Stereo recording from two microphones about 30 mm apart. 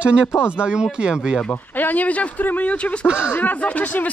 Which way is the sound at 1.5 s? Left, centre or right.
Left.